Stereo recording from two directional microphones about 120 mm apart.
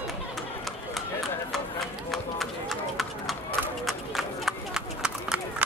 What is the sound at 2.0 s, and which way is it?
Clip-clop, centre (ahead or behind).